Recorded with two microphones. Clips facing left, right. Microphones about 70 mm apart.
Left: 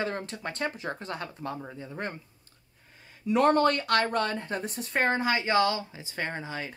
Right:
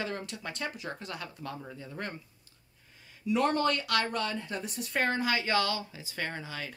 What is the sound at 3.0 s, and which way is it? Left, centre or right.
Speech, left.